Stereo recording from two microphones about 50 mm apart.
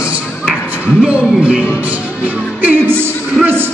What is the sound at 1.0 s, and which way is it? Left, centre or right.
Speech, right.